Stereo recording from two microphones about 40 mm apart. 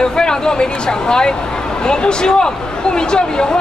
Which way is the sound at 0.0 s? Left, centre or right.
Centre.